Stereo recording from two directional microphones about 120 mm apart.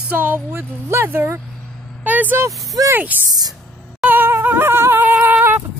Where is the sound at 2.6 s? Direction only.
30° right (ahead or behind).